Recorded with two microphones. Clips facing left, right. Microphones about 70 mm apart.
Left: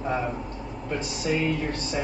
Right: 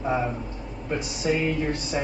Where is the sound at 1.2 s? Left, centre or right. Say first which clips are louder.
Right 2 dB; centre.